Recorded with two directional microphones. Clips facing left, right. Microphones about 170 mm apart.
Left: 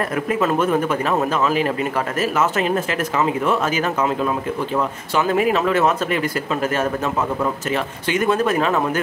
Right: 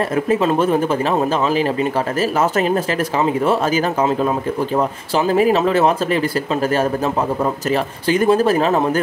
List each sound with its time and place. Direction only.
0.1 s speech: 25° right (ahead or behind)